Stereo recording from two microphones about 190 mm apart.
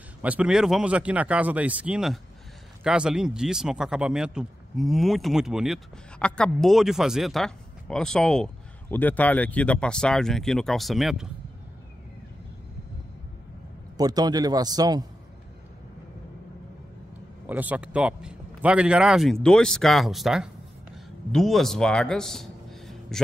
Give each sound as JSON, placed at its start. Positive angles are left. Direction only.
{"t": 0.2, "sound": "a man's voice", "side_deg": -5}
{"t": 13.9, "sound": "a man's voice", "side_deg": -20}
{"t": 17.5, "sound": "a man's voice", "side_deg": -10}